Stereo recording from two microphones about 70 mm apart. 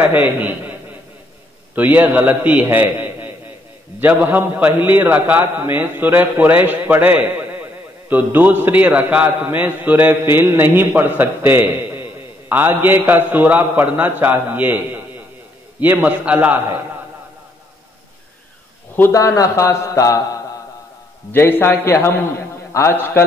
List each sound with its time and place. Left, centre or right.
0.0 s a man's voice: right
19.1 s speech: left
21.3 s a man's voice: left